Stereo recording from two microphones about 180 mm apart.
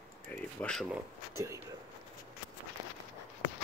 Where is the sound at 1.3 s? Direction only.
15° right (ahead or behind).